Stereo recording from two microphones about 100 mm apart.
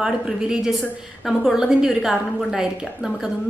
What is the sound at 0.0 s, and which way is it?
A woman's voice, 5° right (ahead or behind).